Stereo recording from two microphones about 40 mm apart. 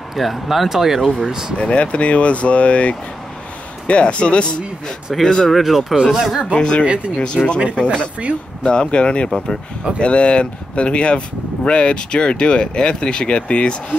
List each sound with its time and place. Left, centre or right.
0.1 s speech: centre
1.6 s speech: left
5.2 s speech: centre
5.5 s speech: centre
6.5 s speech: left
6.8 s speech: right
7.3 s speech: left